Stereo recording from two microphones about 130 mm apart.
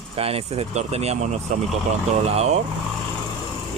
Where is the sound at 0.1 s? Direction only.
50° right (ahead or behind).